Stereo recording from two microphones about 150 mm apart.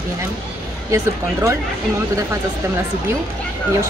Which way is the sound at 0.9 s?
20° right (ahead or behind).